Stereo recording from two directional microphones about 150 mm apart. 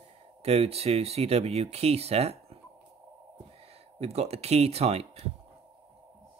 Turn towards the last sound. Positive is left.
turn(degrees=-45)  # may be behind; listen again after turning